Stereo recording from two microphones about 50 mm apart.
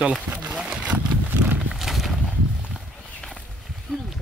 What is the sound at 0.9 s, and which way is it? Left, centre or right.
Horse, right.